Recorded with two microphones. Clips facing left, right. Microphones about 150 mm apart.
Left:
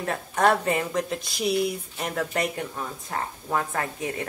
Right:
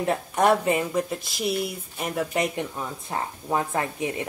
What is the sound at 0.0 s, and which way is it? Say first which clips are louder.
Speech: right 1 dB; 15° right (ahead or behind).